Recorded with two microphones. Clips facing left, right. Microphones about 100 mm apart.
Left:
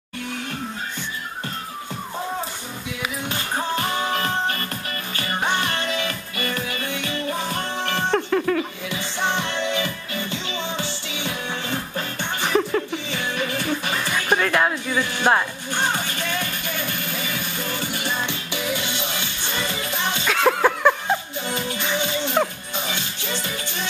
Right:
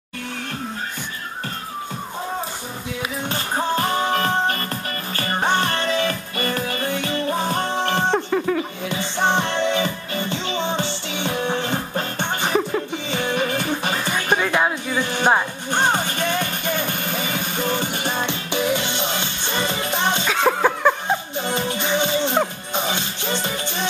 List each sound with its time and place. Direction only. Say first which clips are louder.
3.3 s music: right 3 dB; 30° right (ahead or behind)
8.1 s music: even; 10° right (ahead or behind)
8.8 s music: right 4 dB; 30° right (ahead or behind)
13.1 s music: right 5 dB; 30° right (ahead or behind)
15.3 s speech: right 1 dB; 10° right (ahead or behind)
15.7 s music: right 5 dB; 35° right (ahead or behind)
20.2 s a sound: left 2 dB; 5° right (ahead or behind)
21.1 s music: right 2 dB; 25° right (ahead or behind)